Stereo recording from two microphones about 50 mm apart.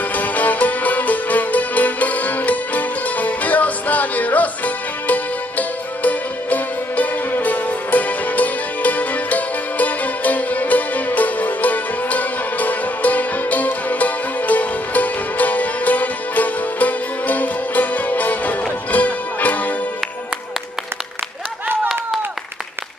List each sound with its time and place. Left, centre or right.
0.1 s music: left